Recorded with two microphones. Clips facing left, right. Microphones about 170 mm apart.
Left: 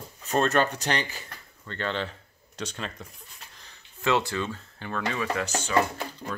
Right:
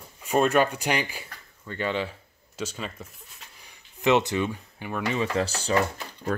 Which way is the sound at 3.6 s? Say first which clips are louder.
Right 4 dB; 15° right (ahead or behind).